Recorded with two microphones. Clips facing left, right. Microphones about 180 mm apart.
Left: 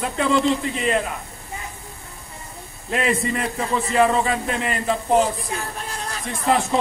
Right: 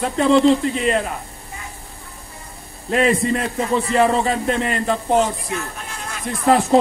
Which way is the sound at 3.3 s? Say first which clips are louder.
Right 4 dB; 35° right (ahead or behind).